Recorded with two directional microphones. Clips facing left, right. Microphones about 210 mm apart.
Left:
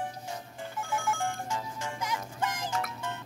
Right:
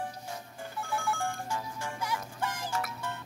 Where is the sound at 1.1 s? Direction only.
20° left (ahead or behind).